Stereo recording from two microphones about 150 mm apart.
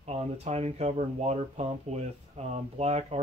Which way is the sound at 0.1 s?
45° right (ahead or behind).